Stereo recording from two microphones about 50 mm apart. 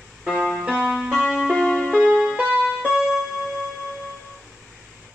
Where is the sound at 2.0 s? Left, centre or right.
Centre.